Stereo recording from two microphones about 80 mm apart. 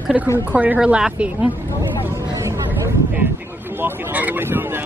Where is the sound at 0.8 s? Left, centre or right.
Centre.